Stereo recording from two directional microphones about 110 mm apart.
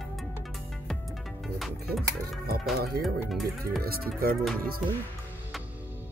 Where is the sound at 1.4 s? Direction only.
Centre (ahead or behind).